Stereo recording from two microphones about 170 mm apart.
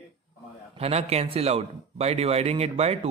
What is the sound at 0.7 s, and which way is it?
Speech, 35° right (ahead or behind).